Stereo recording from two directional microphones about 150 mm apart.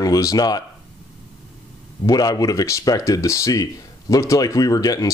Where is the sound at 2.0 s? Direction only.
25° left (ahead or behind).